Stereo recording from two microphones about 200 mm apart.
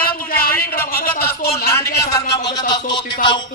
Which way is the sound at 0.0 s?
50° left (ahead or behind).